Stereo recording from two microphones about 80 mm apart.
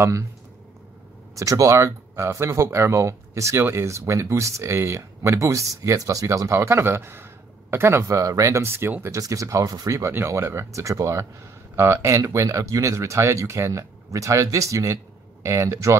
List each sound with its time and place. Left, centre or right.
1.3 s speech: right